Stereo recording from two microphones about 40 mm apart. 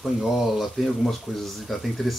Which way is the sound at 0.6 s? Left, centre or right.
Centre.